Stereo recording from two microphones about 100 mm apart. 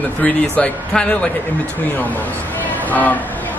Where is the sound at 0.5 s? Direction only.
10° left (ahead or behind).